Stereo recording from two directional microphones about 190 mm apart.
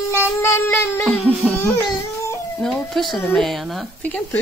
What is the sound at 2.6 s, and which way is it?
Speech, centre (ahead or behind).